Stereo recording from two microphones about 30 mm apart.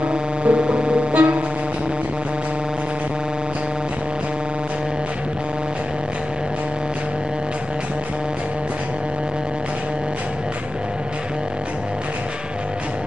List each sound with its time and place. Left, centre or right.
0.0 s music: right